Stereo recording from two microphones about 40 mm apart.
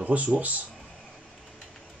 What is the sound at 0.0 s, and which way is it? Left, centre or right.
Speech, right.